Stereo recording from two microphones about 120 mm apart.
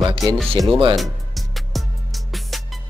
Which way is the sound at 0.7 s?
45° right (ahead or behind).